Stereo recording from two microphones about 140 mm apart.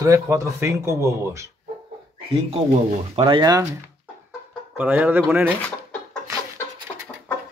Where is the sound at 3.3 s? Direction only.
30° right (ahead or behind).